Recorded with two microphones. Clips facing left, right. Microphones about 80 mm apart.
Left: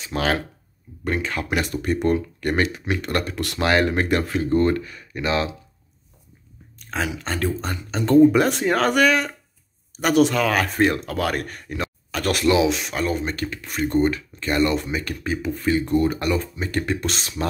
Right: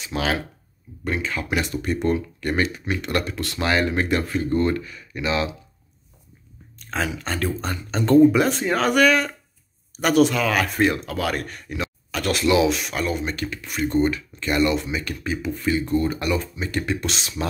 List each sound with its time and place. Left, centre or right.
0.0 s speech: left
3.0 s speech: left
4.3 s speech: left
4.6 s speech: left
6.8 s speech: centre
7.9 s speech: centre
8.3 s speech: left
8.9 s speech: centre
10.3 s speech: left
12.5 s speech: left
13.1 s speech: left
15.9 s speech: left
16.2 s speech: left